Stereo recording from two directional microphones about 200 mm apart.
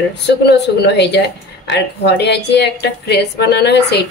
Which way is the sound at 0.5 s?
55° left (ahead or behind).